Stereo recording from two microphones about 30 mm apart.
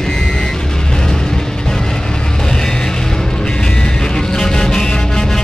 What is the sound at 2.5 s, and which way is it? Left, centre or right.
Music, centre.